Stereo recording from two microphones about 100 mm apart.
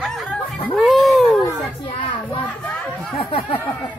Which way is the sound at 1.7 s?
60° left (ahead or behind).